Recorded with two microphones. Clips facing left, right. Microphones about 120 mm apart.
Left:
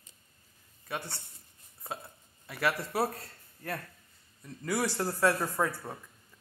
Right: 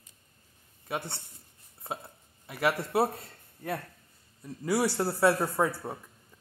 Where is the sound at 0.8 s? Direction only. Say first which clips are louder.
Right 3 dB; 25° right (ahead or behind).